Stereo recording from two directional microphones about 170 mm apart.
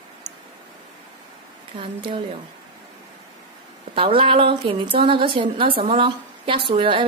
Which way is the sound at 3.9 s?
30° right (ahead or behind).